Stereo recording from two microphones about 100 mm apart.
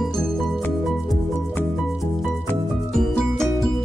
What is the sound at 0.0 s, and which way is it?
Music, centre (ahead or behind).